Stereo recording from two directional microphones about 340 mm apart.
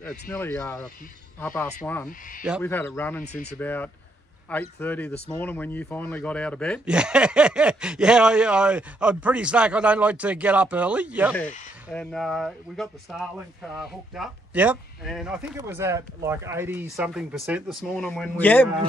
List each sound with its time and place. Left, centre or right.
0.0 s speech: centre
3.3 s speech: centre
3.5 s speech: centre